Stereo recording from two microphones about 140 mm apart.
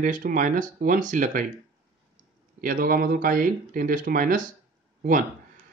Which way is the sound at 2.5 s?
90° right.